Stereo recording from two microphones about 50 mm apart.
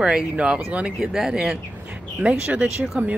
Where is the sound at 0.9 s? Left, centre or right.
Centre.